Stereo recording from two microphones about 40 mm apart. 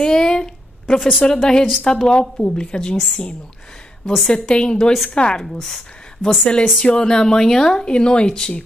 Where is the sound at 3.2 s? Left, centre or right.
Centre.